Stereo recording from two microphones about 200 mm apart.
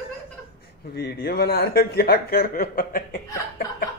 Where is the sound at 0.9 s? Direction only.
50° left (ahead or behind).